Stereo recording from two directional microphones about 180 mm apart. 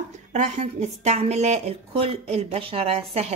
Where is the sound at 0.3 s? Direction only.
40° right (ahead or behind).